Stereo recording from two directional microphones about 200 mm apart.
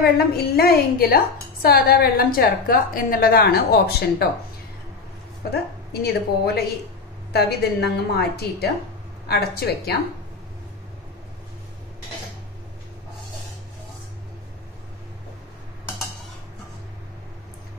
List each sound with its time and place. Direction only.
0.0 s a woman's voice: 50° left (ahead or behind)
5.5 s a woman's voice: 55° left (ahead or behind)